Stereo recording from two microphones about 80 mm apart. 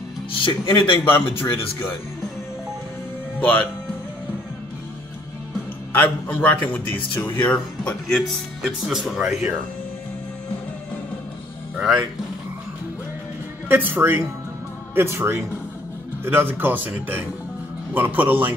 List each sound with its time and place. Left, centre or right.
0.4 s speech: left
1.4 s speech: left
3.3 s speech: centre
5.9 s speech: left
8.8 s speech: centre
11.7 s music: centre
13.9 s speech: right